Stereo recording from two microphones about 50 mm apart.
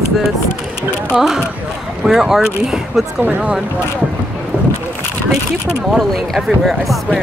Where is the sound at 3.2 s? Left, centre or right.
Right.